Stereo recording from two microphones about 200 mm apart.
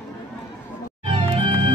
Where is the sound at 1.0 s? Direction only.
25° right (ahead or behind).